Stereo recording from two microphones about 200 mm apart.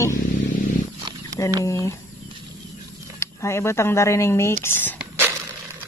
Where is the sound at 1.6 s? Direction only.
15° left (ahead or behind).